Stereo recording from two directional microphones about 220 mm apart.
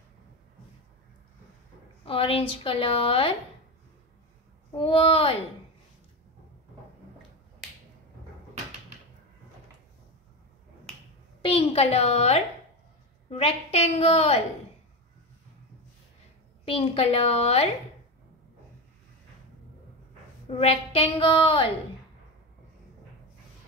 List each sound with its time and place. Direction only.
2.0 s a woman's voice: 25° left (ahead or behind)
4.7 s a woman's voice: 25° left (ahead or behind)
11.4 s a woman's voice: 25° left (ahead or behind)
16.6 s a woman's voice: 25° left (ahead or behind)
20.4 s a woman's voice: 30° left (ahead or behind)